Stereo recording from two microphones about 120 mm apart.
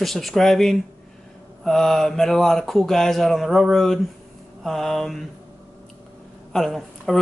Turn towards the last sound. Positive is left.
turn(degrees=0)  # may be behind; listen again after turning